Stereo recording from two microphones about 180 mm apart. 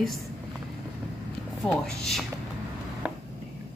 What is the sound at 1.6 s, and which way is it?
Speech, centre (ahead or behind).